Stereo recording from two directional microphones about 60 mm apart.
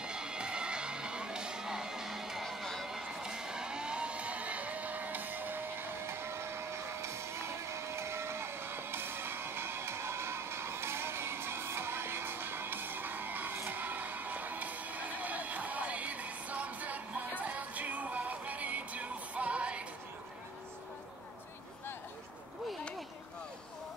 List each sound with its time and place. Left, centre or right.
0.0 s music: centre
2.9 s music: centre